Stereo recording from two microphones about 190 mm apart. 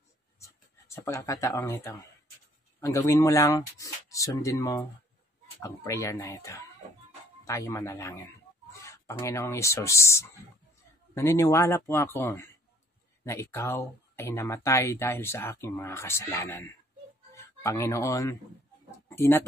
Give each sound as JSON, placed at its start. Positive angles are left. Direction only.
{"t": 0.4, "sound": "speech", "side_deg": 15}